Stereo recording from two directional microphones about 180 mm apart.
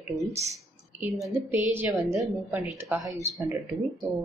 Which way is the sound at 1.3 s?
10° right (ahead or behind).